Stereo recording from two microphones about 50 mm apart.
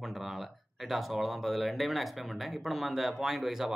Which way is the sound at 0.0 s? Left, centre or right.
Centre.